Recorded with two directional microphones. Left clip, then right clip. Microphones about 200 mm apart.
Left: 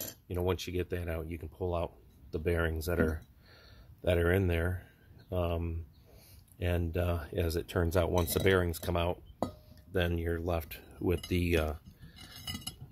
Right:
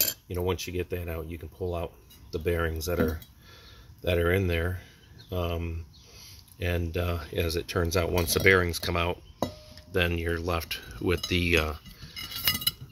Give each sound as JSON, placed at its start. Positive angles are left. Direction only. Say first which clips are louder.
{"t": 0.3, "sound": "speech", "louder": "left 2 dB", "side_deg": 5}